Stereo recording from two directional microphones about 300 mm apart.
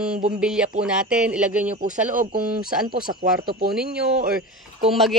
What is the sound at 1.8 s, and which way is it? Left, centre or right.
Speech, right.